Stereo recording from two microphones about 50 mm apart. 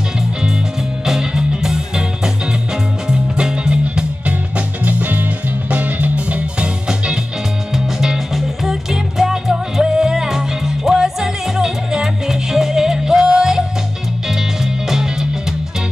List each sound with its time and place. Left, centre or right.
1.0 s music: centre
7.7 s music: centre